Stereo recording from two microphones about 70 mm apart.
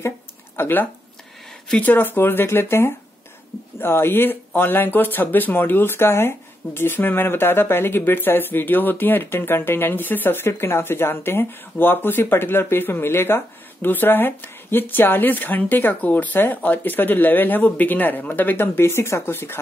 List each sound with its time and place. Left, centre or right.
0.6 s speech: left